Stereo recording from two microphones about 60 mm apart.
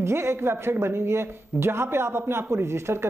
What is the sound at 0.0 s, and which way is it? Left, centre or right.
Speech, right.